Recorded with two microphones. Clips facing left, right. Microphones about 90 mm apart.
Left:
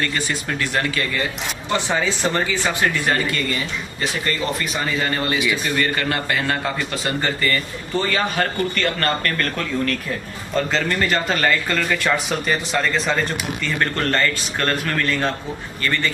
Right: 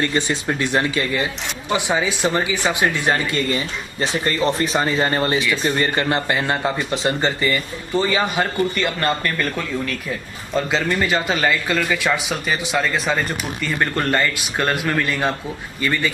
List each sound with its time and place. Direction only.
0.0 s a man's voice: 20° right (ahead or behind)